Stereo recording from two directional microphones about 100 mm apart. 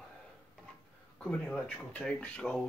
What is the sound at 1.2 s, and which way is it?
Speech, 10° left (ahead or behind).